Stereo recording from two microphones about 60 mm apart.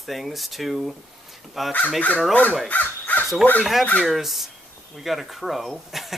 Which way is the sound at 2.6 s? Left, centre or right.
Left.